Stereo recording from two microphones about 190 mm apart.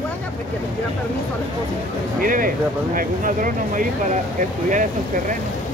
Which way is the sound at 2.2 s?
45° right (ahead or behind).